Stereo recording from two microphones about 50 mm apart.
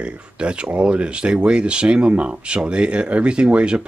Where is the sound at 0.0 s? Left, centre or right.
Right.